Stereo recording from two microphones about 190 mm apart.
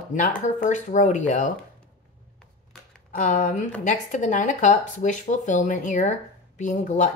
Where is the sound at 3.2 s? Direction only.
45° left (ahead or behind).